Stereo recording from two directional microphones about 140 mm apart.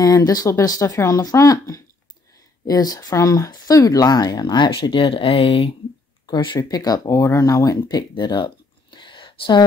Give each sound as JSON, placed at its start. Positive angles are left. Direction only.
{"t": 0.0, "sound": "speech", "side_deg": 25}
{"t": 6.2, "sound": "speech", "side_deg": 30}
{"t": 8.1, "sound": "a sound", "side_deg": 30}